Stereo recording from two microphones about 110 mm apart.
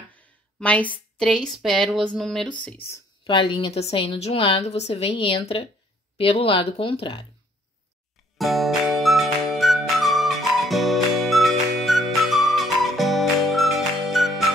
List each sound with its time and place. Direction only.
0.6 s speech: 15° left (ahead or behind)
3.3 s a woman's voice: 50° left (ahead or behind)
4.6 s a woman's voice: 80° left; by 7.2 s 55° left (ahead or behind)
8.4 s music: centre (ahead or behind)